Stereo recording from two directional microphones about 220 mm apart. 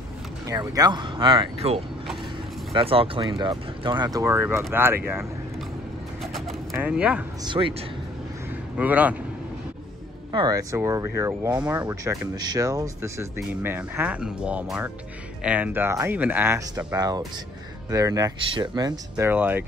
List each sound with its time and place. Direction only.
0.5 s speech: 15° right (ahead or behind)
6.2 s bird: centre (ahead or behind)
7.4 s speech: 25° right (ahead or behind)
8.7 s speech: 5° right (ahead or behind)
10.3 s speech: 15° right (ahead or behind)